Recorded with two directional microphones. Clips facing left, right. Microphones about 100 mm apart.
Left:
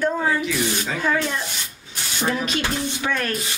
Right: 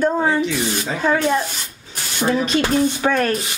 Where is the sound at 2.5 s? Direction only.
40° right (ahead or behind).